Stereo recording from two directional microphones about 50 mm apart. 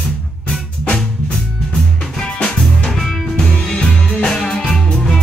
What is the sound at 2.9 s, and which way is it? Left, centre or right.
Music, centre.